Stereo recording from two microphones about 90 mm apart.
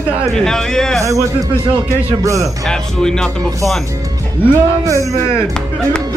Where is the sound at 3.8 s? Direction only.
35° right (ahead or behind).